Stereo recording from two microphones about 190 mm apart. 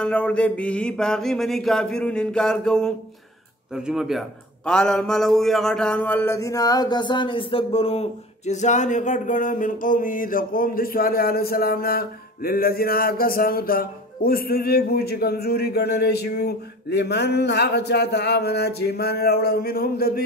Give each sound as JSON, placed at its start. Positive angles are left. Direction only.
{"t": 0.0, "sound": "a man's voice", "side_deg": 5}